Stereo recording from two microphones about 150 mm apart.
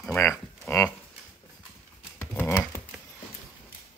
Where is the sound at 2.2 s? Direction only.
15° left (ahead or behind).